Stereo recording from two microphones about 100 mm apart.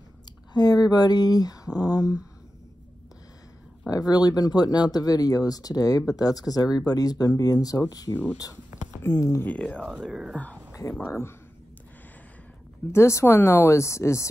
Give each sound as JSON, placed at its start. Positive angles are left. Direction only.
{"t": 0.5, "sound": "speech", "side_deg": 40}
{"t": 3.9, "sound": "speech", "side_deg": 40}
{"t": 8.1, "sound": "speech", "side_deg": 15}
{"t": 9.5, "sound": "speech", "side_deg": 10}
{"t": 10.0, "sound": "speech", "side_deg": -5}
{"t": 10.3, "sound": "speech", "side_deg": 10}
{"t": 12.9, "sound": "speech", "side_deg": 25}